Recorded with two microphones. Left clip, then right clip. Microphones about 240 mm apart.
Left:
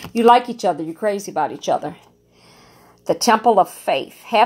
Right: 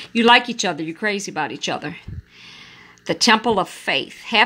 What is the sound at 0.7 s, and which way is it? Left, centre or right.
Speech, right.